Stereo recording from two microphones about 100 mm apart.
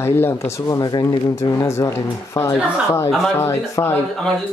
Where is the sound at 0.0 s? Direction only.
25° left (ahead or behind).